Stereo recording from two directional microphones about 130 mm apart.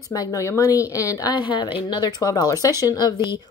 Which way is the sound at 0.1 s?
25° left (ahead or behind).